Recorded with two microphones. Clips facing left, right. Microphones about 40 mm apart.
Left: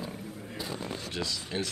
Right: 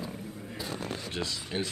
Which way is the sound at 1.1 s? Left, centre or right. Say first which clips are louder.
Left 1 dB; right.